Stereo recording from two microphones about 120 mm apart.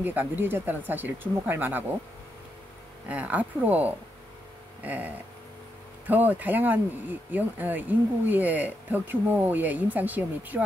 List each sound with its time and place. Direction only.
0.0 s speech: 15° right (ahead or behind)
3.1 s speech: 10° right (ahead or behind)